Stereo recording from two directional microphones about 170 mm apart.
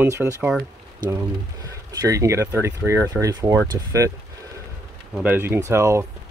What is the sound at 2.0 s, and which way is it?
Speech, 20° right (ahead or behind).